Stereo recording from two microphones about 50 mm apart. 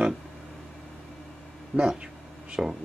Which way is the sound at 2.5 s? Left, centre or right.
Centre.